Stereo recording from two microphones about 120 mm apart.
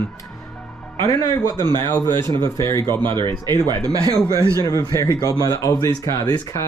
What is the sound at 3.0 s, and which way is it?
Speech, 40° right (ahead or behind).